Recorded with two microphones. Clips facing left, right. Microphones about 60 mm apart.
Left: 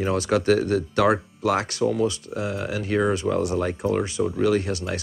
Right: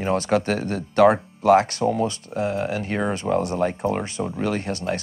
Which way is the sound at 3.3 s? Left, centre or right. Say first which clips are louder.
Right 2 dB; centre.